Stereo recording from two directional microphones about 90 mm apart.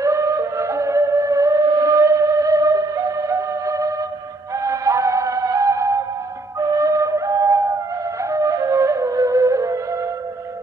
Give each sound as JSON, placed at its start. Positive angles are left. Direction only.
{"t": 0.0, "sound": "music", "side_deg": -35}
{"t": 6.6, "sound": "flute", "side_deg": -40}
{"t": 8.3, "sound": "music", "side_deg": -40}